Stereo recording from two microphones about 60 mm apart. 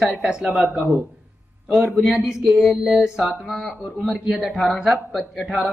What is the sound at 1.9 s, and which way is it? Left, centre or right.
Speech, centre.